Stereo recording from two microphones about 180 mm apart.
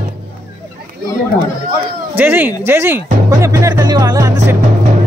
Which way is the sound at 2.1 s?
10° right (ahead or behind).